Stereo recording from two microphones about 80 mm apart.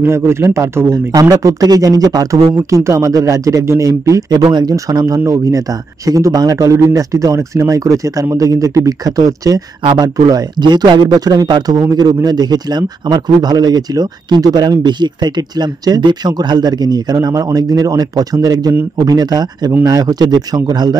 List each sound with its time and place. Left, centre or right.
0.0 s a man's voice: right
1.3 s a man's voice: right
2.7 s a man's voice: right
4.4 s speech: right
4.7 s a man's voice: right
10.2 s speech: right
11.1 s speech: right
16.0 s speech: right